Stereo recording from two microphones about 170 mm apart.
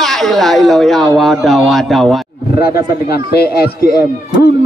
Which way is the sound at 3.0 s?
70° left (ahead or behind).